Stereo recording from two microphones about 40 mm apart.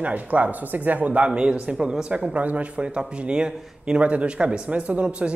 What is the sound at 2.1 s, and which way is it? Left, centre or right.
Speech, right.